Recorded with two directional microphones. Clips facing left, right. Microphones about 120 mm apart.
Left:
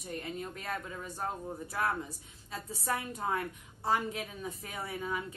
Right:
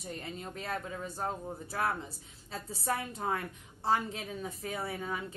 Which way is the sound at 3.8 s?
30° right (ahead or behind).